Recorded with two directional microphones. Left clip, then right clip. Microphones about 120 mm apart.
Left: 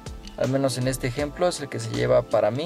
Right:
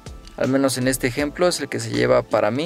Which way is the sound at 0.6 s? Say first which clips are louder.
Right 5 dB; 40° right (ahead or behind).